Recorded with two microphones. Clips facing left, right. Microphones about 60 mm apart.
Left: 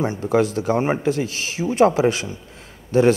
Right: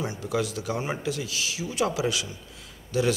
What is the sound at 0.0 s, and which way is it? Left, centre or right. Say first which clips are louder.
A man's voice: left 9 dB; left.